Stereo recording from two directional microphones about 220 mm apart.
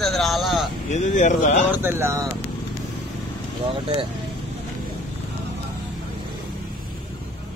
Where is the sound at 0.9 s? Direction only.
35° left (ahead or behind).